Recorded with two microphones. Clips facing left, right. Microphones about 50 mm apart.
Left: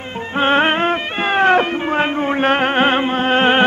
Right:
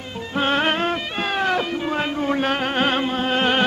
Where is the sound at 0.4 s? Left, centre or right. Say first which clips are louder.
Left 5 dB; left.